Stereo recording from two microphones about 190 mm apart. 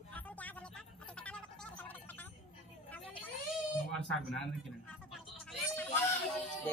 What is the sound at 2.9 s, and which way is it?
Vehicle, 10° left (ahead or behind).